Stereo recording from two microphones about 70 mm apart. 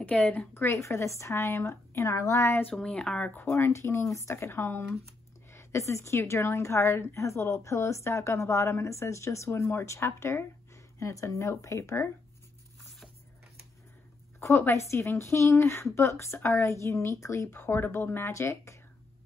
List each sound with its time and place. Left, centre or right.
0.1 s speech: centre
0.6 s a woman's voice: left
2.7 s speech: centre
3.3 s a woman's voice: left
14.7 s a woman's voice: left